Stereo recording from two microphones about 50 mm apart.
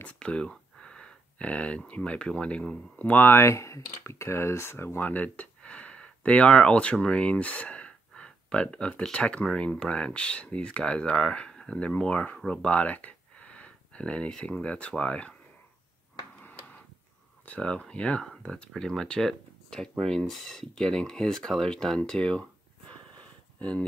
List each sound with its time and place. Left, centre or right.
0.0 s speech: left
3.0 s speech: left
3.3 s speech: left
5.0 s speech: left
17.6 s speech: centre
23.6 s speech: left